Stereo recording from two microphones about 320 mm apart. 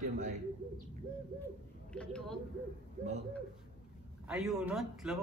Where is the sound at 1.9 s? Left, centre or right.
Centre.